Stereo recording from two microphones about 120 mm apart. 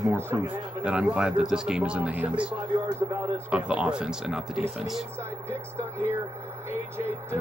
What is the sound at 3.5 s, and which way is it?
Speech, 10° right (ahead or behind).